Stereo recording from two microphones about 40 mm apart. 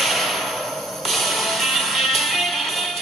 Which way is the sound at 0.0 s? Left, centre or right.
Centre.